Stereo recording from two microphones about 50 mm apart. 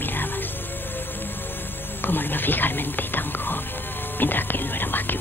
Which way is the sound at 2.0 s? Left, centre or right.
Left.